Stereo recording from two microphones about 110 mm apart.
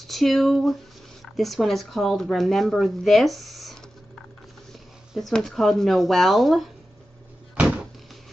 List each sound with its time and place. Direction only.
0.0 s speech: centre (ahead or behind)
7.5 s door: centre (ahead or behind)